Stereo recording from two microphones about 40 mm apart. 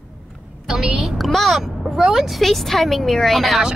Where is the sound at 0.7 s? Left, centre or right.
Centre.